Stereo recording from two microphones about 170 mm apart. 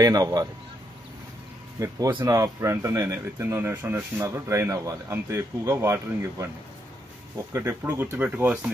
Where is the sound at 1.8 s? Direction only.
25° right (ahead or behind).